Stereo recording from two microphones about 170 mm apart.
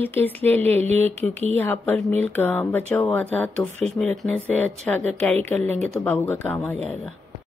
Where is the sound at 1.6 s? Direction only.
10° left (ahead or behind).